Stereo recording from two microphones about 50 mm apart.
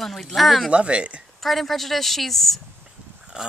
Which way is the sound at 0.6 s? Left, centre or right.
Right.